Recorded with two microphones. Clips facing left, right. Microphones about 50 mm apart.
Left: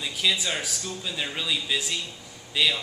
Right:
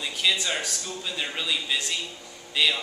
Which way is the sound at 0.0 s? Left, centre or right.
Centre.